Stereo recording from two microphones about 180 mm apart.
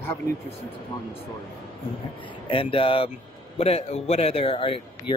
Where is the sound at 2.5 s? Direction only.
30° left (ahead or behind).